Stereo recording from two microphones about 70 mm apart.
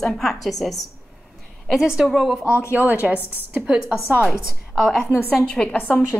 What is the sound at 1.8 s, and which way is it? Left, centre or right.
Speech, centre.